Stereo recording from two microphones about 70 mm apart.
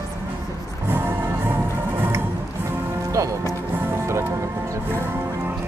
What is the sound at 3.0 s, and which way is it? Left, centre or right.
Music, right.